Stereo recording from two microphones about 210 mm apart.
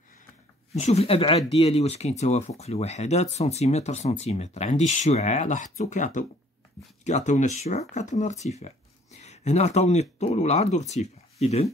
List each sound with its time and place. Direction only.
0.7 s speech: 30° left (ahead or behind)